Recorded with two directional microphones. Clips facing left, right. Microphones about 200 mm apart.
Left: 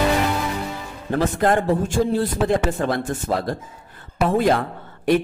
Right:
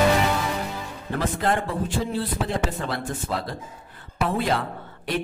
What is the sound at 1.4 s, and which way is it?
Speech, 45° left (ahead or behind).